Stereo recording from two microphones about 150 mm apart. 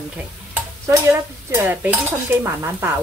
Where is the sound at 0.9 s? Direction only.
15° right (ahead or behind).